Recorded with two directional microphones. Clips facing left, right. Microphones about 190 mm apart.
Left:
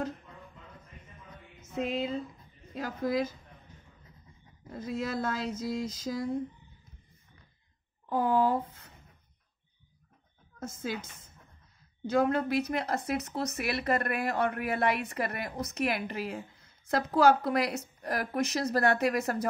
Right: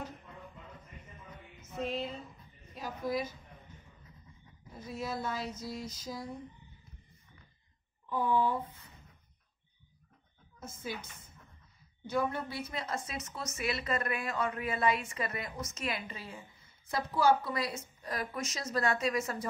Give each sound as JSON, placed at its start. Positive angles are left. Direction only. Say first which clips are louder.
{"t": 2.7, "sound": "speech", "louder": "left 4 dB", "side_deg": 90}
{"t": 4.6, "sound": "speech", "louder": "left 5 dB", "side_deg": 90}
{"t": 8.1, "sound": "speech", "louder": "left 4 dB", "side_deg": 90}
{"t": 10.6, "sound": "speech", "louder": "left 5 dB", "side_deg": 90}
{"t": 12.1, "sound": "a woman's voice", "louder": "left 7 dB", "side_deg": 90}